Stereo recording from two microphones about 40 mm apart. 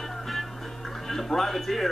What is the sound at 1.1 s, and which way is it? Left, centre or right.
Speech, centre.